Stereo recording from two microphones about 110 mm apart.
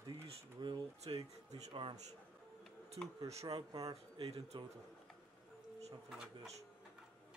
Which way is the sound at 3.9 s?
60° right (ahead or behind).